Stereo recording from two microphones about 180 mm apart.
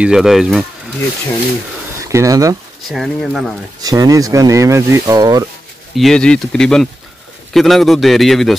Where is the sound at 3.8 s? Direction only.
20° right (ahead or behind).